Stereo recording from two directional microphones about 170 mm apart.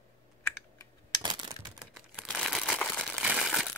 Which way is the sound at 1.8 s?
Centre (ahead or behind).